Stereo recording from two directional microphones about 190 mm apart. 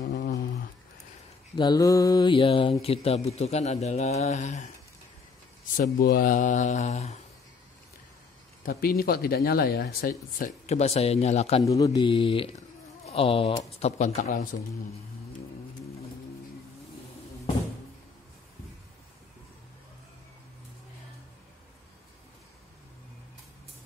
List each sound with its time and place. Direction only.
0.0 s a sound: 55° left (ahead or behind)
1.6 s mantra: 20° left (ahead or behind)
2.8 s speech: 30° left (ahead or behind)
5.8 s speech: 50° left (ahead or behind)
8.6 s speech: 50° left (ahead or behind)
10.7 s speech: 35° left (ahead or behind)
11.6 s mantra: 20° left (ahead or behind)
13.0 s speech: 30° left (ahead or behind)